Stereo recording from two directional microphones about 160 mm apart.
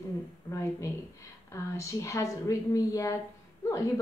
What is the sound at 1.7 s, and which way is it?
A woman's voice, 20° left (ahead or behind).